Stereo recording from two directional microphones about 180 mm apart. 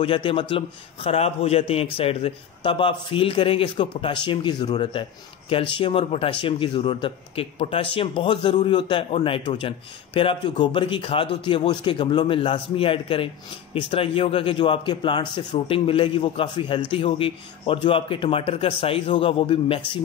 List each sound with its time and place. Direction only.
0.0 s speech: 30° left (ahead or behind)